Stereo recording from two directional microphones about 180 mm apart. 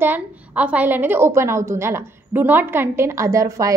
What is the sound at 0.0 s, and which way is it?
A woman's voice, 10° right (ahead or behind).